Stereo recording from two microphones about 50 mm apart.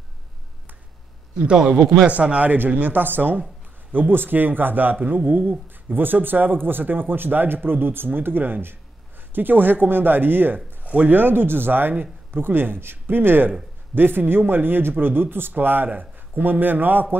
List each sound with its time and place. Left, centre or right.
1.5 s a man's voice: centre; by 17.2 s right